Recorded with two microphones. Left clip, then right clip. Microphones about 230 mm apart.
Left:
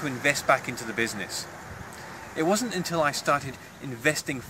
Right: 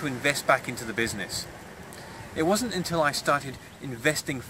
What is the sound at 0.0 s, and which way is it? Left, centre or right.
Speech, centre.